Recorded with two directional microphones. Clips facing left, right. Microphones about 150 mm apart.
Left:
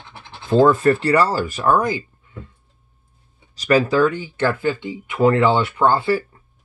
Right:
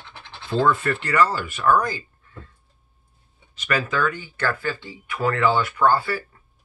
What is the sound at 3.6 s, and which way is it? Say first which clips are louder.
Speech: left 8 dB; 35° left (ahead or behind).